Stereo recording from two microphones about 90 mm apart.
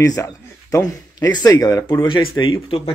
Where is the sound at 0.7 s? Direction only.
40° left (ahead or behind).